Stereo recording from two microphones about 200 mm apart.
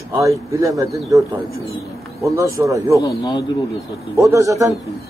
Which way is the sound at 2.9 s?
20° left (ahead or behind).